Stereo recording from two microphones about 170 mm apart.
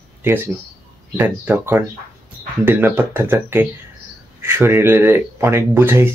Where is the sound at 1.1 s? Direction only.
10° right (ahead or behind).